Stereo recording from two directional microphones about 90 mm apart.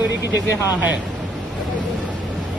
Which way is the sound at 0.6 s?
20° right (ahead or behind).